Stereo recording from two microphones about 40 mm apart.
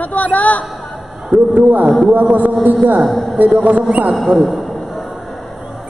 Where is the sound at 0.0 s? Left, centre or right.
Left.